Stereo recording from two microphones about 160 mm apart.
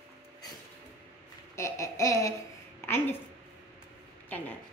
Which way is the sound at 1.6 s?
20° left (ahead or behind).